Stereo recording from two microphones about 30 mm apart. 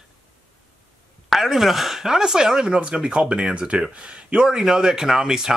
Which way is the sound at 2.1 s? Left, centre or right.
Right.